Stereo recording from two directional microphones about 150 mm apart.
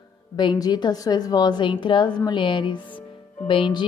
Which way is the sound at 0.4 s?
30° left (ahead or behind).